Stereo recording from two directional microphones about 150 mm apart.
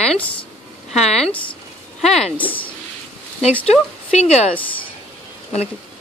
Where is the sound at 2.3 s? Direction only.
10° left (ahead or behind).